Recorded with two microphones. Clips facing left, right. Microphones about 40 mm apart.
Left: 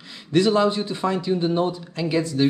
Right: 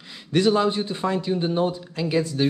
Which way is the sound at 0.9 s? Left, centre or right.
Right.